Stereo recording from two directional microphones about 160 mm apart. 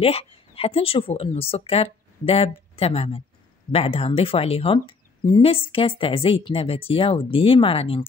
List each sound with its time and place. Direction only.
0.0 s a woman's voice: 35° left (ahead or behind)